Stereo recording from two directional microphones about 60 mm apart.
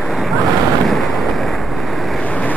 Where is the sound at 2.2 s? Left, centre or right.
Left.